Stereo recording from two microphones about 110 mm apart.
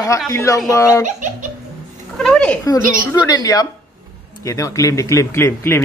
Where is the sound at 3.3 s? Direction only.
35° left (ahead or behind).